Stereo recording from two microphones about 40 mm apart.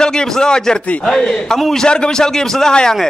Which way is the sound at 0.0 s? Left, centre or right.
Centre.